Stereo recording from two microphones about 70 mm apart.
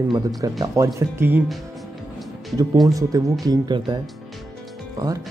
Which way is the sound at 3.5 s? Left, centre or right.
Right.